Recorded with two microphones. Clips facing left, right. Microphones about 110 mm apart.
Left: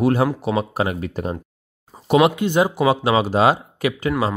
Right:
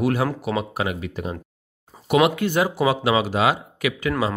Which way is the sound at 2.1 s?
25° left (ahead or behind).